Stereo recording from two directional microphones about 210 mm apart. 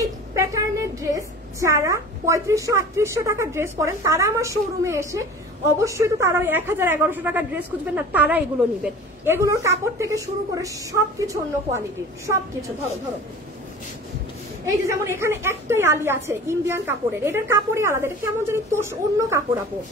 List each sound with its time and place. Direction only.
0.3 s a sound: 15° right (ahead or behind)
1.1 s a woman's voice: 15° right (ahead or behind)
14.7 s a woman's voice: 10° right (ahead or behind)